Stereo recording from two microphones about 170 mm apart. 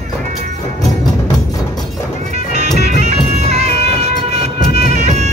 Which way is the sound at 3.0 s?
40° right (ahead or behind).